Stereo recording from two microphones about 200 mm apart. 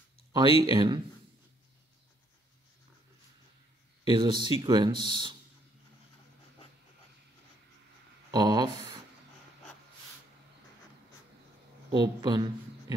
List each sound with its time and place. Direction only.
0.3 s speech: 20° right (ahead or behind)
4.0 s speech: 25° right (ahead or behind)
8.3 s speech: 20° right (ahead or behind)
12.0 s speech: 20° right (ahead or behind)